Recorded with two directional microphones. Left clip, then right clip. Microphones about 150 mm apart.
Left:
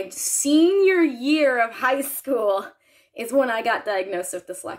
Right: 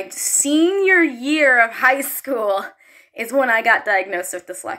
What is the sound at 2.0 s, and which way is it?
Speech, 25° left (ahead or behind).